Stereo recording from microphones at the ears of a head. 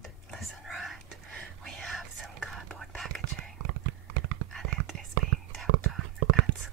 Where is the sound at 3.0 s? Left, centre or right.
Right.